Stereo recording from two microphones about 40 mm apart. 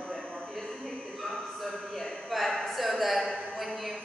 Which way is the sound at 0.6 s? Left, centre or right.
Centre.